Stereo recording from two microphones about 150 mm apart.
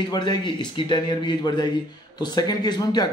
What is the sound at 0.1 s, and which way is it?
Speech, 30° left (ahead or behind).